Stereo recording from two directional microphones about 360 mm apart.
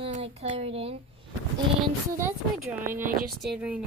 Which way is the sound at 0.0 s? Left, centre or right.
Centre.